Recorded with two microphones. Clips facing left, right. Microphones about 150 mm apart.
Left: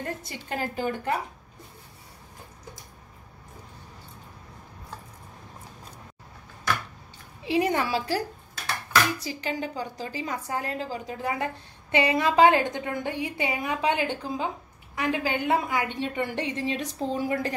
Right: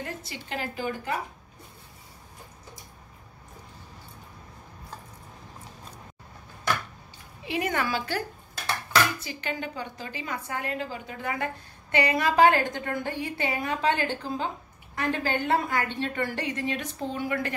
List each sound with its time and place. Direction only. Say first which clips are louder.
0.0 s a woman's voice: left 2 dB; 45° left (ahead or behind)
7.4 s speech: left 4 dB; 30° left (ahead or behind)
9.2 s a woman's voice: left 3 dB; 35° left (ahead or behind); by 16.3 s 15° left (ahead or behind)
16.3 s a woman's voice: left 2 dB; 25° left (ahead or behind)